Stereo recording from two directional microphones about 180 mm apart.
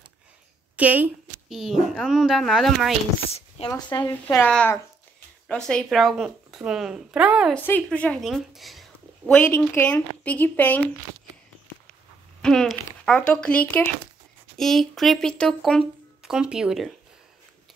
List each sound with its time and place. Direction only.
0.7 s speech: 10° right (ahead or behind)
3.3 s speech: 35° left (ahead or behind)
3.7 s speech: 20° left (ahead or behind); by 7.5 s 5° right (ahead or behind)
7.5 s a woman's voice: 10° left (ahead or behind)
9.4 s speech: 10° left (ahead or behind)
12.4 s speech: 5° left (ahead or behind)